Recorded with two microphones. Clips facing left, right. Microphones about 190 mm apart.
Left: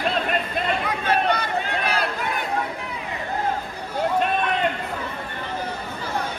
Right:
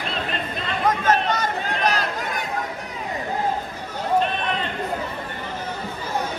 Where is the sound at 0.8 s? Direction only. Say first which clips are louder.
Right 5 dB; 45° right (ahead or behind).